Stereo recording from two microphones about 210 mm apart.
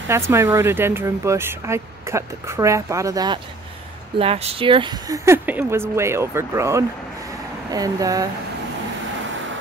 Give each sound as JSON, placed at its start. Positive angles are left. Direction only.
{"t": 0.1, "sound": "speech", "side_deg": -15}
{"t": 4.2, "sound": "speech", "side_deg": -30}